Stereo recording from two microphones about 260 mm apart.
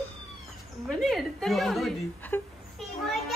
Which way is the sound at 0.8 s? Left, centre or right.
Centre.